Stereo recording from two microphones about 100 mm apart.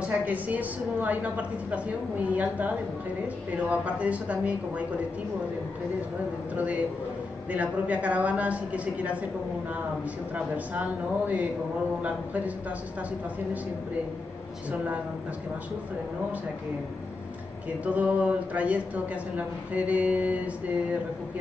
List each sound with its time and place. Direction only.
0.0 s a woman's voice: 15° right (ahead or behind)
6.5 s a woman's voice: 15° right (ahead or behind)
10.3 s a woman's voice: 15° right (ahead or behind)
17.8 s a woman's voice: 15° right (ahead or behind)